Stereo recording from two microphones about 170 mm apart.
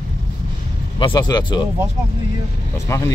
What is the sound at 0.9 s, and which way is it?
Speech, 25° left (ahead or behind).